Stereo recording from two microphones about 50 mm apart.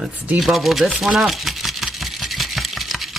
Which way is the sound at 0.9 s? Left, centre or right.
Centre.